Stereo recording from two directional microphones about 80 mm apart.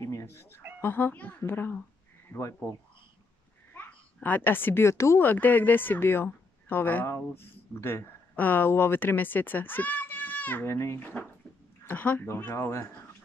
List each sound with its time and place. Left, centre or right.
0.0 s a sound: left
0.7 s speech: left
3.7 s a child's voice: left
5.2 s speech: left
10.7 s speech: left
11.0 s speech: left